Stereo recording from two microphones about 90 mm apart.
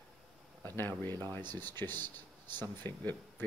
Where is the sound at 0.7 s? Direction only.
25° left (ahead or behind).